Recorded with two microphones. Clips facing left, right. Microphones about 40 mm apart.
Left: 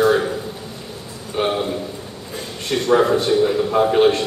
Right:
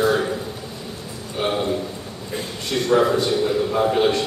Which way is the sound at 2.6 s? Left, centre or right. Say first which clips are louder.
Left 2 dB; centre.